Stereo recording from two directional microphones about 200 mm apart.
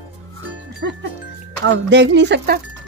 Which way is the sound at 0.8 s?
60° right (ahead or behind).